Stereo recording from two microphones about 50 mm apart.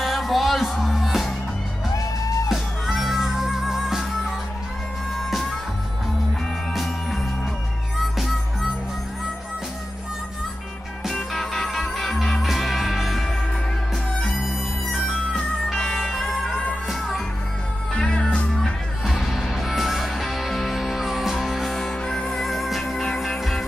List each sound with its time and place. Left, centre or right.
0.0 s music: centre
2.5 s music: centre
6.7 s music: centre
11.1 s music: centre
14.4 s music: centre
17.9 s music: centre
18.6 s music: centre